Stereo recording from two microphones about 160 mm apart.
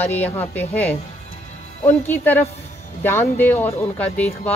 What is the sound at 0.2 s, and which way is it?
Speech, 10° left (ahead or behind).